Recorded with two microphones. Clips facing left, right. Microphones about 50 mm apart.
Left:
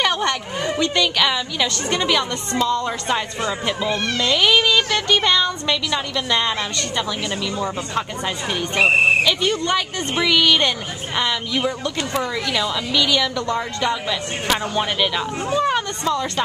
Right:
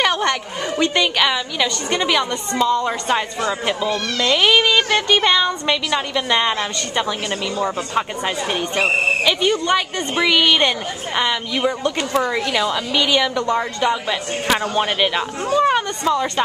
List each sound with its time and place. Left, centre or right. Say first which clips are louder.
0.0 s a sound: right 2 dB; centre
0.7 s speech: right 3 dB; centre
12.2 s a woman's voice: right 5 dB; right
12.4 s speech: right 2 dB; centre